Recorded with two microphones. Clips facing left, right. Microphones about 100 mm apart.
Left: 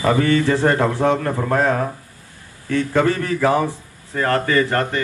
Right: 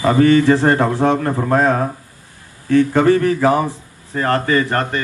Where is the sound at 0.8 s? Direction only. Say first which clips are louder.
Right 2 dB; 50° right (ahead or behind).